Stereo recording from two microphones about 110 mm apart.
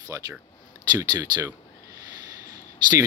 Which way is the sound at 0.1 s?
25° right (ahead or behind).